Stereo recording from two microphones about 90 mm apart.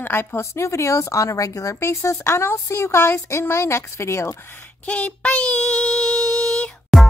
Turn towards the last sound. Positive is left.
turn(degrees=0)  # may be behind; listen again after turning